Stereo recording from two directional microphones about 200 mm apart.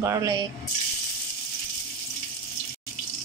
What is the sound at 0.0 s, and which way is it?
Speech, 15° right (ahead or behind).